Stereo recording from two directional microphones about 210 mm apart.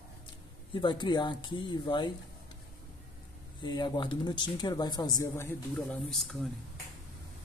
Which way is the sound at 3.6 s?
20° left (ahead or behind).